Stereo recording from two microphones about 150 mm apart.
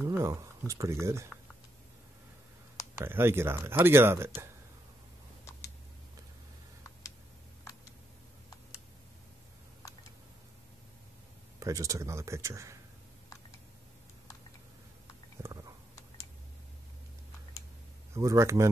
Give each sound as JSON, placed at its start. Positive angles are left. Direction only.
{"t": 0.1, "sound": "speech", "side_deg": -20}
{"t": 3.0, "sound": "speech", "side_deg": -15}
{"t": 11.6, "sound": "speech", "side_deg": -20}
{"t": 15.4, "sound": "a sound", "side_deg": -20}
{"t": 18.1, "sound": "speech", "side_deg": -20}